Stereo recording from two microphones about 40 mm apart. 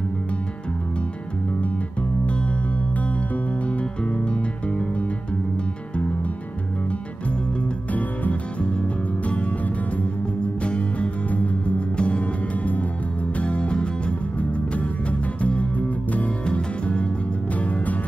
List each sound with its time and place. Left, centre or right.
4.2 s music: left
7.9 s music: left
10.6 s music: left